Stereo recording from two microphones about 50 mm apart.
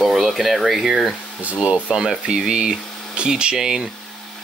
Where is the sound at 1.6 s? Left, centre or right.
Right.